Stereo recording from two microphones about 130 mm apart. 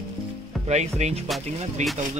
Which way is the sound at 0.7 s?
60° right (ahead or behind).